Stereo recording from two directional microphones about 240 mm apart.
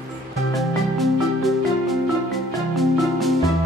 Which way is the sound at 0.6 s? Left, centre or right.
Centre.